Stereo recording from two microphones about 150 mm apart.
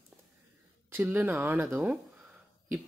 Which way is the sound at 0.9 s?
15° right (ahead or behind).